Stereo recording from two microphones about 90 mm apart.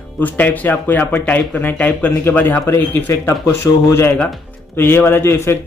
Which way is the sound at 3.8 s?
35° left (ahead or behind).